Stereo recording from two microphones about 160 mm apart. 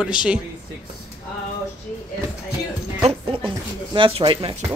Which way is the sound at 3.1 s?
35° right (ahead or behind).